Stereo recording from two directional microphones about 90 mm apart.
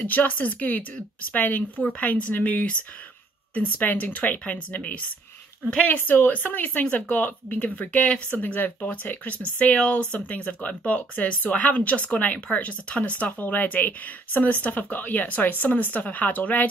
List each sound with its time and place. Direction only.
0.0 s speech: 20° left (ahead or behind)